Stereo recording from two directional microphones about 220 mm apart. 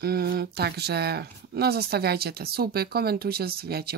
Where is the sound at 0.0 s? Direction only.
45° right (ahead or behind).